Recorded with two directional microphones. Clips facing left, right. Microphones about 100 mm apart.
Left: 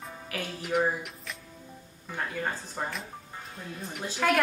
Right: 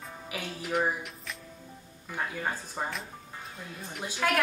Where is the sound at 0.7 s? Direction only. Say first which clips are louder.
Left 2 dB; 5° right (ahead or behind).